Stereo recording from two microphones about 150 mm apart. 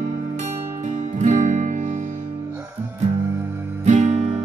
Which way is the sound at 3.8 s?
50° right (ahead or behind).